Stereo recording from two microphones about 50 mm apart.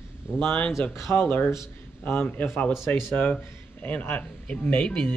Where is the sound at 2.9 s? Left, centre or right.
Left.